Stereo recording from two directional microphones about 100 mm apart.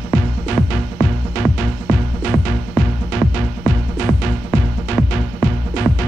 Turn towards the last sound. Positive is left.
turn(degrees=-5)  # may be behind; listen again after turning